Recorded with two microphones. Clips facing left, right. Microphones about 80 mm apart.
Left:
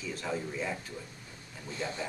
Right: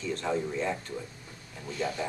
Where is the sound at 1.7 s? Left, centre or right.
Left.